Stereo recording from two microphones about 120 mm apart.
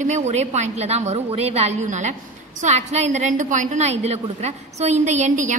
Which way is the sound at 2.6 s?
70° right (ahead or behind).